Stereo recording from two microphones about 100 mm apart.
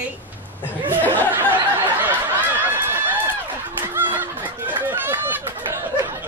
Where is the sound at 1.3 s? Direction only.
20° right (ahead or behind).